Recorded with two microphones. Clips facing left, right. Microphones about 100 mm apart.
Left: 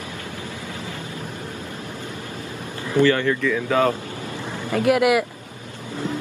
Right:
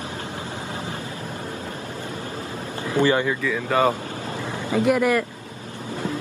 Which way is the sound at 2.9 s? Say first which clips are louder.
Left 2 dB; 15° right (ahead or behind).